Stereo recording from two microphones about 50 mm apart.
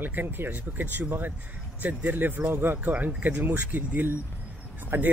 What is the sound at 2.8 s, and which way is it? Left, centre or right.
Speech, right.